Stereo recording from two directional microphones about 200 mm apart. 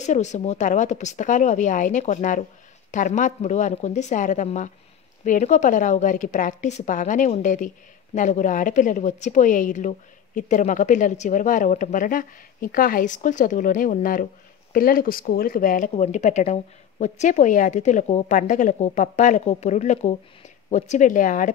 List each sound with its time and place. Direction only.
0.0 s a woman's voice: 35° left (ahead or behind)